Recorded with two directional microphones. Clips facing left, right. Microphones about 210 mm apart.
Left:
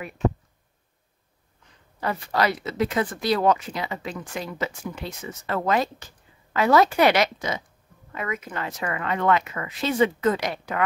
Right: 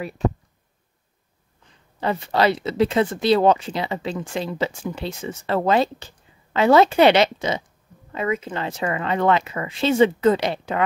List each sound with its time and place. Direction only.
0.2 s speech: 35° right (ahead or behind)
2.0 s speech: 25° right (ahead or behind)